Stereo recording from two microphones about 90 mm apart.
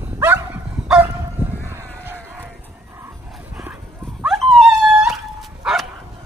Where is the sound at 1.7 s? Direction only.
25° right (ahead or behind).